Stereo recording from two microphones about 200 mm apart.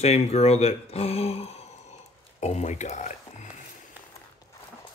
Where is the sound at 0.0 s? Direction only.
30° left (ahead or behind).